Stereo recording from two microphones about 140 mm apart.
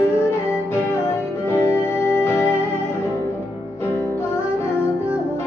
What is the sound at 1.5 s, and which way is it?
Music, 20° left (ahead or behind).